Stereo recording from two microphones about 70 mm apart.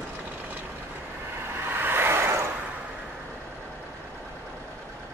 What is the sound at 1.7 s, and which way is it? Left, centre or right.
Vehicle, right.